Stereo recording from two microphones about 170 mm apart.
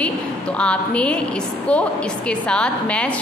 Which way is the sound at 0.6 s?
5° left (ahead or behind).